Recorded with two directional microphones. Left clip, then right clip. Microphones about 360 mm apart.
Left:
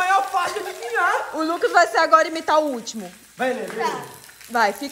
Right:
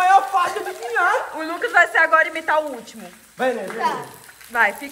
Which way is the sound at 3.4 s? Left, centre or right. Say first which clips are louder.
Right 2 dB; centre.